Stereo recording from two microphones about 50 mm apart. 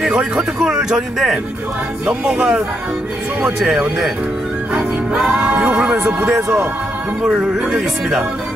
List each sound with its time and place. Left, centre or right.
0.0 s speech: centre
5.2 s speech: right
7.4 s speech: centre
7.7 s speech: centre